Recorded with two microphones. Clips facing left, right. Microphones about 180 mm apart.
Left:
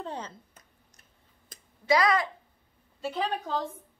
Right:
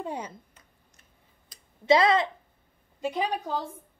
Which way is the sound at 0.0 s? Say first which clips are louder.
Right 3 dB; 10° right (ahead or behind).